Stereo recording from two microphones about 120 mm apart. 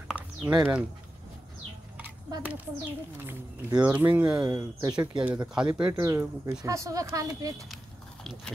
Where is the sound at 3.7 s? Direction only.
10° right (ahead or behind).